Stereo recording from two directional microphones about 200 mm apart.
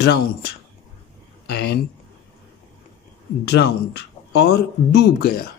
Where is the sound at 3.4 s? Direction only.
55° left (ahead or behind).